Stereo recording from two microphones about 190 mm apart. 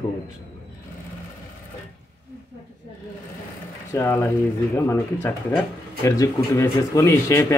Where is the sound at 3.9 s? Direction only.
15° left (ahead or behind).